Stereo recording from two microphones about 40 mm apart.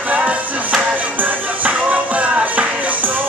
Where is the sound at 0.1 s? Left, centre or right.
Right.